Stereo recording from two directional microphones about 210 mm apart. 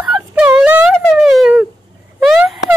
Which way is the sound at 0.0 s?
5° right (ahead or behind).